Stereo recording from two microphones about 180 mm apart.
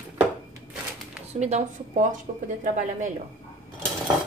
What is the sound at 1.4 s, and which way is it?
Speech, 40° right (ahead or behind).